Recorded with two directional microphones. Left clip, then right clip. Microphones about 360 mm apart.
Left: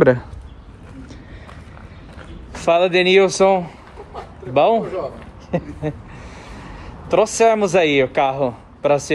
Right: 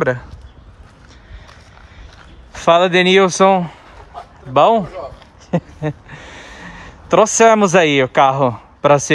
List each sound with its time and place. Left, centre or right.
2.5 s a man's voice: centre
5.5 s a sound: right
7.1 s a man's voice: right